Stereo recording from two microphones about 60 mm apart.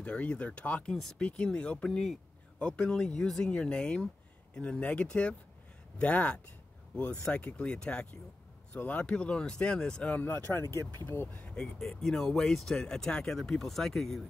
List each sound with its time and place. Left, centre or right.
0.0 s speech: centre
0.9 s speech: centre
1.2 s speech: centre
1.9 s speech: centre
3.4 s speech: centre
10.2 s speech: left
11.4 s speech: centre